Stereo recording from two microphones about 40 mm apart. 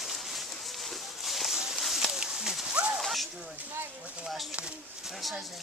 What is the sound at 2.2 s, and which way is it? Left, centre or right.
Horse, centre.